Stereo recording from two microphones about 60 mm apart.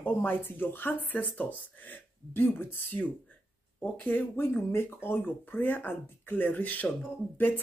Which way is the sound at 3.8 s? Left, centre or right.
Left.